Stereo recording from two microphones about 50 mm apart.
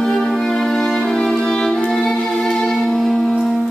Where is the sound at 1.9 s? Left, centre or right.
Centre.